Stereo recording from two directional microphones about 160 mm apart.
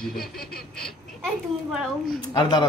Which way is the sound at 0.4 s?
70° left (ahead or behind).